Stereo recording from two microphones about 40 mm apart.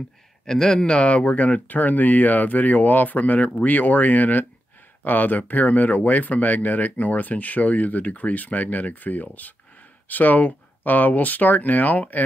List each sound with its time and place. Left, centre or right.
0.5 s speech: centre
0.9 s speech: left